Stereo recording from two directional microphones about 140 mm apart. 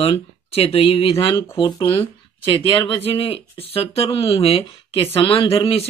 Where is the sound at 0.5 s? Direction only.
45° left (ahead or behind).